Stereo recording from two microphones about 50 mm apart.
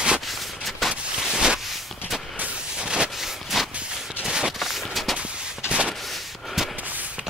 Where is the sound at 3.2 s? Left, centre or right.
Centre.